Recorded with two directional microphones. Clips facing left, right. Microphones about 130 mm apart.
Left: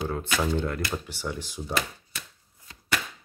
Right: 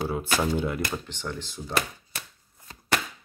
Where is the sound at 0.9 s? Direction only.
10° left (ahead or behind).